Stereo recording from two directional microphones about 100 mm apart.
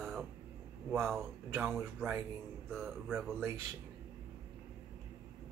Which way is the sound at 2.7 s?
5° left (ahead or behind).